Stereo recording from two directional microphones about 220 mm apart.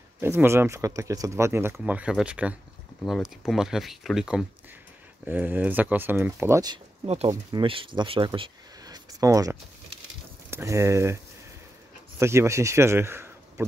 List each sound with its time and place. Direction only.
0.2 s speech: 10° right (ahead or behind)
12.2 s speech: 10° right (ahead or behind)